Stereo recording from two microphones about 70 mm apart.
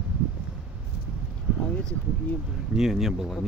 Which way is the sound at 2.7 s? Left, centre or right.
Centre.